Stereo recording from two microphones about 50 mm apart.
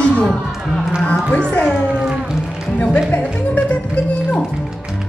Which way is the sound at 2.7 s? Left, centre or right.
Left.